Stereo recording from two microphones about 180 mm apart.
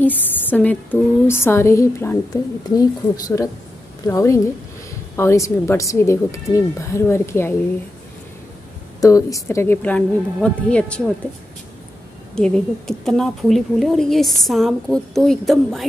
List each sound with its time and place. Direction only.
0.0 s speech: 10° left (ahead or behind)
9.0 s speech: 20° left (ahead or behind)
12.4 s speech: 5° left (ahead or behind)